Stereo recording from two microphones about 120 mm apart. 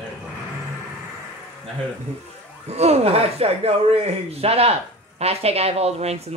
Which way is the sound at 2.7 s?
65° right (ahead or behind).